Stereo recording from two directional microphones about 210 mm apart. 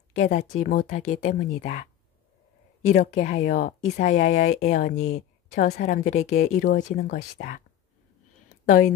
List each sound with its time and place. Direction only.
0.2 s a woman's voice: 35° left (ahead or behind)
2.9 s a woman's voice: 35° left (ahead or behind)
4.9 s speech: 90° left
5.5 s a woman's voice: 40° left (ahead or behind)
8.6 s a woman's voice: 40° left (ahead or behind)